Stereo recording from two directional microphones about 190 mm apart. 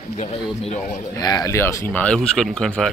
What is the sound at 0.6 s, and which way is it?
Speech, 30° left (ahead or behind).